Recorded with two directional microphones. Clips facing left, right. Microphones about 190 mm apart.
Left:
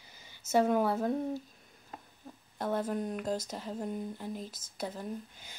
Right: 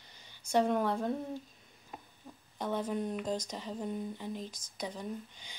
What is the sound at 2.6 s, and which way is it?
Speech, 5° left (ahead or behind).